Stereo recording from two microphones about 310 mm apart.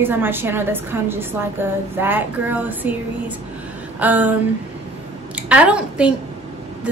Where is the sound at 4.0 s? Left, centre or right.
Centre.